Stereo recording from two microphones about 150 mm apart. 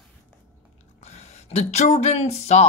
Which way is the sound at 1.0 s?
45° left (ahead or behind).